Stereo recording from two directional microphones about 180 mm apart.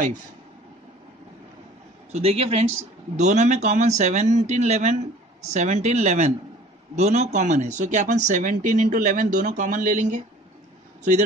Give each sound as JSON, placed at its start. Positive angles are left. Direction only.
{"t": 2.1, "sound": "speech", "side_deg": -35}